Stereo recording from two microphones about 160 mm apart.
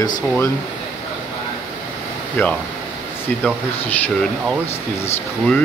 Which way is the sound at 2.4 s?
15° left (ahead or behind).